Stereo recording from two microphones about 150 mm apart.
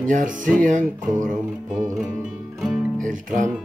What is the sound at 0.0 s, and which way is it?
Speech, 60° right (ahead or behind).